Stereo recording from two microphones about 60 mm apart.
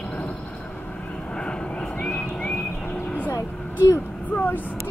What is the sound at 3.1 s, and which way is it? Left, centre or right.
Vehicle, left.